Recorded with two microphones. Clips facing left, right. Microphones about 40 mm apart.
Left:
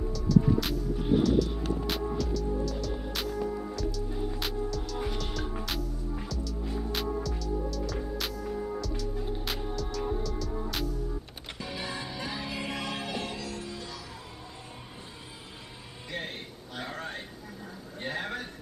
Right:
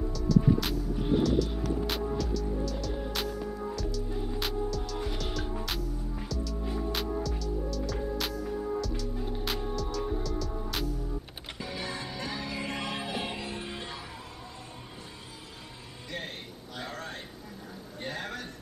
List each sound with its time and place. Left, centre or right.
0.1 s music: centre
13.2 s music: right
16.7 s a sound: centre